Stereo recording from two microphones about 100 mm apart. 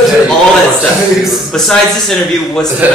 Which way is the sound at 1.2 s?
Centre (ahead or behind).